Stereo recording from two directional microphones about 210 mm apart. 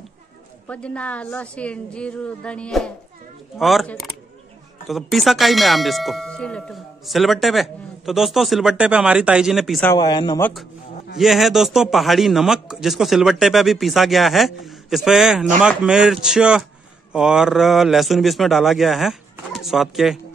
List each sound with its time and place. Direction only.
0.7 s speech: 5° left (ahead or behind)
9.8 s speech: 20° left (ahead or behind)
11.1 s speech: centre (ahead or behind)